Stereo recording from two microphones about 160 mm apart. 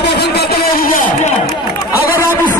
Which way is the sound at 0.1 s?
90° left.